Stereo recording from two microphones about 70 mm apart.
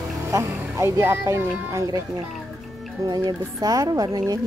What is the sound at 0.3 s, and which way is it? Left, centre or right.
Vehicle, right.